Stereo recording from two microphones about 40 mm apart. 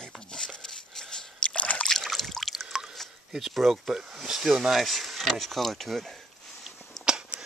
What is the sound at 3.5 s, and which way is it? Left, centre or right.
Speech, centre.